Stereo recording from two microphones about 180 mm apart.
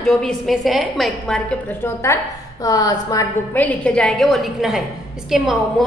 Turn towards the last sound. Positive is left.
turn(degrees=0)  # may be behind; listen again after turning